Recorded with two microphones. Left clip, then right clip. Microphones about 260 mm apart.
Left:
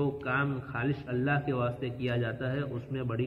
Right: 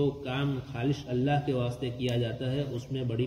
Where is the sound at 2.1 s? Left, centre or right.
Right.